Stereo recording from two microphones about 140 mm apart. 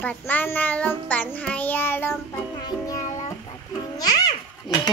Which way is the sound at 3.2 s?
25° left (ahead or behind).